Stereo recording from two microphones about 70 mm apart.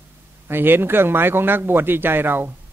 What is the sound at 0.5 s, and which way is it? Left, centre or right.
Speech, right.